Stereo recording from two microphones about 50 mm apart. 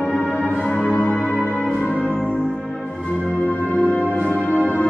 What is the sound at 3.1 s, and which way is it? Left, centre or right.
Music, centre.